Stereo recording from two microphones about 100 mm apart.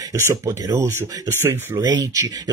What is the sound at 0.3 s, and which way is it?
Speech, 30° right (ahead or behind).